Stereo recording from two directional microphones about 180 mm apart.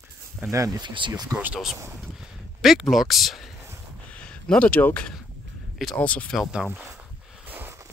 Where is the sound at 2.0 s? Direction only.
Centre (ahead or behind).